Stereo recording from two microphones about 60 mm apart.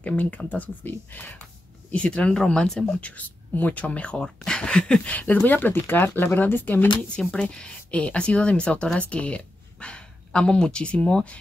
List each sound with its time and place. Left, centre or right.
0.0 s speech: left
3.0 s speech: left
7.3 s speech: centre